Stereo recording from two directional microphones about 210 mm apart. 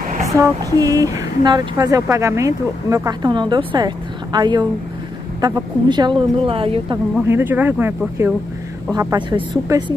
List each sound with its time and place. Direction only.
0.4 s speech: 15° right (ahead or behind)
7.2 s speech: 10° right (ahead or behind)